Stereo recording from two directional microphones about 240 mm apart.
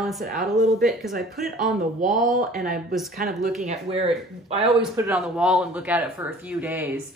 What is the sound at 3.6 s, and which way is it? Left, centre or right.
Speech, right.